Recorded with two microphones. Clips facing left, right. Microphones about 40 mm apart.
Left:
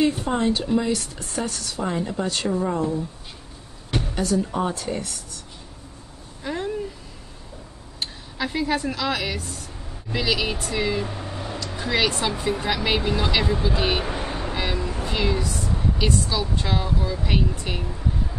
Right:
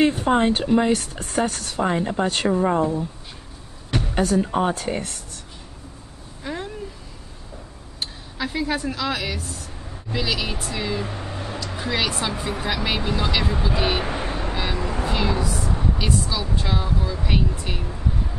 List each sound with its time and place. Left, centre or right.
0.0 s speech: right
4.1 s speech: right
6.4 s a sound: centre
8.0 s speech: centre
11.1 s a sound: centre
12.1 s speech: centre
14.0 s vehicle: centre
14.5 s vehicle: centre
15.0 s a sound: centre
16.1 s speech: centre